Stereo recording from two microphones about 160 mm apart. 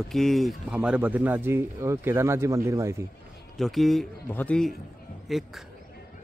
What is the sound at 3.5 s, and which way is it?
A man's voice, centre (ahead or behind).